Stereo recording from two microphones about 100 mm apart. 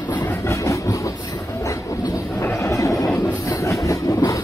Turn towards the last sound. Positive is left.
turn(degrees=35)  # may be behind; listen again after turning